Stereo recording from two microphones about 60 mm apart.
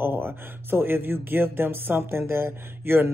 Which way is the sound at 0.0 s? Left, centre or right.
Right.